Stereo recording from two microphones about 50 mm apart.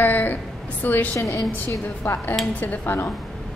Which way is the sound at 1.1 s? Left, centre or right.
Left.